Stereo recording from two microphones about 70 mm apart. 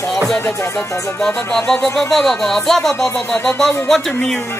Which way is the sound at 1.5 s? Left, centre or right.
Centre.